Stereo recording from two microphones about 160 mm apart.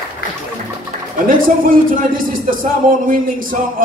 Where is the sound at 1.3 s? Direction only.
60° right (ahead or behind).